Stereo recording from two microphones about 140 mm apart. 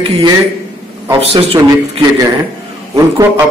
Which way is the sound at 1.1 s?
45° right (ahead or behind).